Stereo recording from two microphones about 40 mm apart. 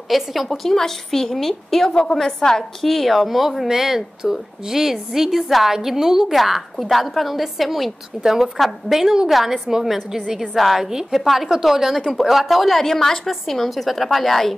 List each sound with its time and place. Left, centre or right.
0.1 s a woman's voice: centre
0.7 s a woman's voice: centre
1.9 s a woman's voice: left; by 8.5 s centre
8.5 s a woman's voice: centre
9.0 s a woman's voice: centre
9.3 s a woman's voice: centre
10.9 s a woman's voice: centre
11.1 s a woman's voice: centre
12.8 s a woman's voice: centre